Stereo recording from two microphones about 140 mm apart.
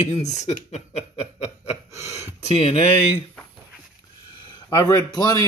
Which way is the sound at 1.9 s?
55° left (ahead or behind).